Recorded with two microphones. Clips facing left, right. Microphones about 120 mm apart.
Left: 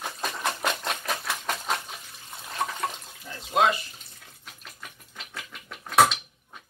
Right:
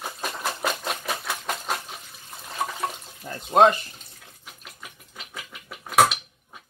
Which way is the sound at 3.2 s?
45° right (ahead or behind).